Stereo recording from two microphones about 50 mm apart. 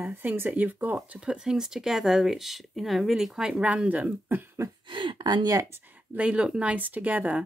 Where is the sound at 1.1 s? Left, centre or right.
Centre.